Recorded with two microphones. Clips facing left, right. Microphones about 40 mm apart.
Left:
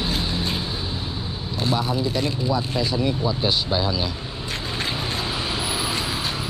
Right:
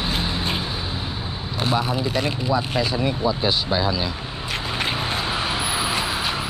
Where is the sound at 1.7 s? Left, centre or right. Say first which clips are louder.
Right 2 dB; right.